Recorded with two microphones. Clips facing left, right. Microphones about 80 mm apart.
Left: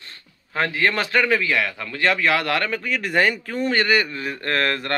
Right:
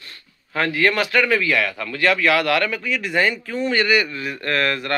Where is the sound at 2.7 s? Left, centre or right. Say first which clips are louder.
Even; left.